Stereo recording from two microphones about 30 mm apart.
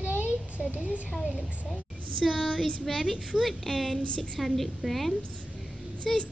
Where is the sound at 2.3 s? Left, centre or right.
Centre.